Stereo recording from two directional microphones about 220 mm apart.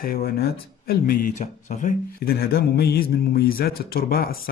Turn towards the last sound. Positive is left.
turn(degrees=40)  # may be behind; listen again after turning